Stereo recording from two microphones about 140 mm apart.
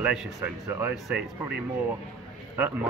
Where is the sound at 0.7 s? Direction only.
20° right (ahead or behind).